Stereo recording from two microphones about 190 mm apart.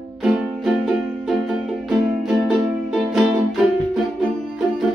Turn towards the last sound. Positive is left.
turn(degrees=0)  # may be behind; listen again after turning